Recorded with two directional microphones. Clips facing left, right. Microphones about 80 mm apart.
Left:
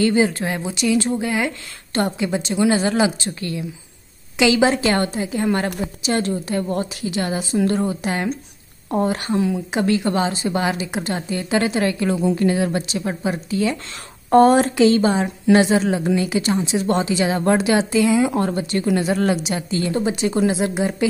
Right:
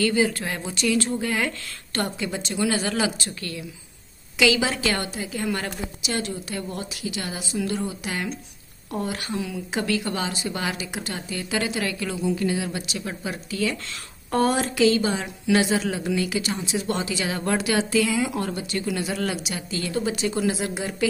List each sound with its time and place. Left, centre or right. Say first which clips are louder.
0.0 s a woman's voice: left 5 dB; left
12.8 s a woman's voice: left 7 dB; left